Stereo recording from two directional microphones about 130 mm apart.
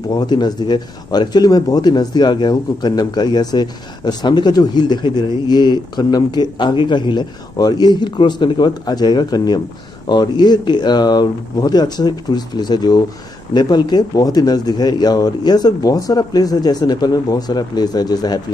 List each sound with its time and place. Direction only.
0.1 s speech: 35° left (ahead or behind)